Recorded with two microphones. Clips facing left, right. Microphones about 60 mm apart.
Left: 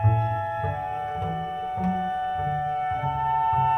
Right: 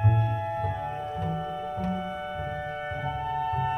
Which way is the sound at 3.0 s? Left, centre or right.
Left.